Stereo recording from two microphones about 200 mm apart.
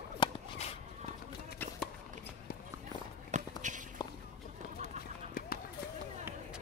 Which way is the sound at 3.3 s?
40° right (ahead or behind).